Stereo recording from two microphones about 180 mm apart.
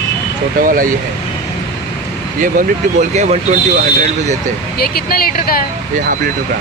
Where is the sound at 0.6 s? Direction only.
50° right (ahead or behind).